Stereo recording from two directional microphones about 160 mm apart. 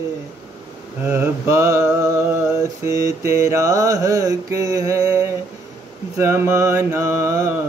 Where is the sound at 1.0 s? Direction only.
15° right (ahead or behind).